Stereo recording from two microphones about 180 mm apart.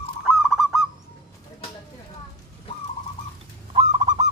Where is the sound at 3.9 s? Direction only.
25° right (ahead or behind).